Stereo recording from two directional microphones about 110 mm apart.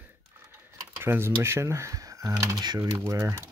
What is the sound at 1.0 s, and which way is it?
Speech, 20° right (ahead or behind).